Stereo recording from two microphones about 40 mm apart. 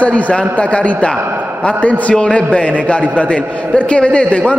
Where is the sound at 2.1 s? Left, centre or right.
Left.